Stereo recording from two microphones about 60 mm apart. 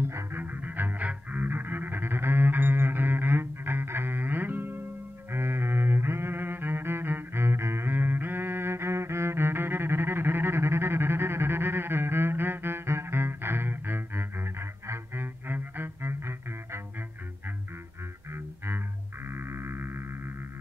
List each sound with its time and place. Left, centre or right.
0.0 s music: right
0.4 s music: right
19.2 s music: right